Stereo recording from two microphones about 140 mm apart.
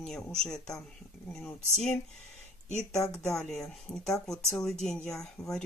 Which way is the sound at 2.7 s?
55° left (ahead or behind).